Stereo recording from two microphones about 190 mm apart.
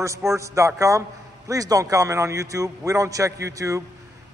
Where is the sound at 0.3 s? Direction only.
15° right (ahead or behind).